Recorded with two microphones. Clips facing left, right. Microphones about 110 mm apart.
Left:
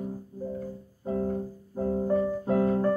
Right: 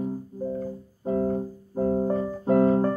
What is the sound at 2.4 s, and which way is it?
Music, 30° right (ahead or behind).